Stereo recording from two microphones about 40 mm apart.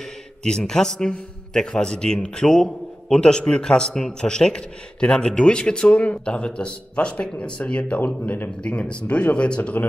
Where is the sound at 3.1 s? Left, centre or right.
Left.